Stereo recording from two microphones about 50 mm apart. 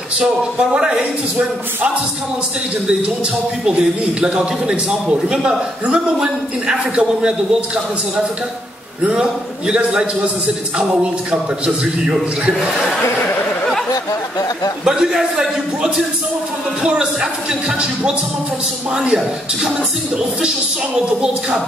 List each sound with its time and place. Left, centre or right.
4.4 s a man's voice: centre
9.0 s a man's voice: centre
11.6 s a man's voice: right
14.9 s a man's voice: centre
21.0 s a man's voice: right